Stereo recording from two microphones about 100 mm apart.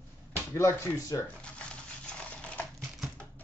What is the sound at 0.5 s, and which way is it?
Speech, 30° left (ahead or behind).